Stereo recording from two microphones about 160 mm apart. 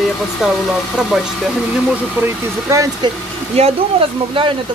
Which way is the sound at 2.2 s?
15° right (ahead or behind).